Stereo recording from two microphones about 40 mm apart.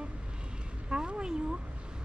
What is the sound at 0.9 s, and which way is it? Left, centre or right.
Speech, right.